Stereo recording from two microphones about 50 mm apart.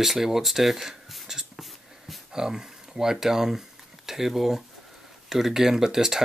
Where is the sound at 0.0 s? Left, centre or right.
Centre.